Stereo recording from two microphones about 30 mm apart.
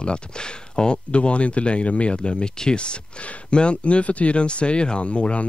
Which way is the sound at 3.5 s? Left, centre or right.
Left.